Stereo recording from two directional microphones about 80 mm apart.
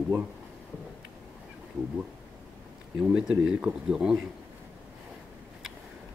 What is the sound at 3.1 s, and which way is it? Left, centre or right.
Speech, centre.